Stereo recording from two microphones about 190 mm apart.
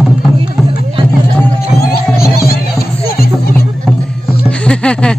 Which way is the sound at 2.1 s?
55° left (ahead or behind).